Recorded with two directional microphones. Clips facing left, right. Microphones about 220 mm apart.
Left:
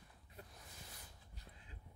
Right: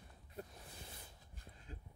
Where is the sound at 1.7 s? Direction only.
45° right (ahead or behind).